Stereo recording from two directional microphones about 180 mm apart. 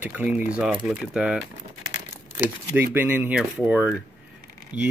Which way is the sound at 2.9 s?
10° right (ahead or behind).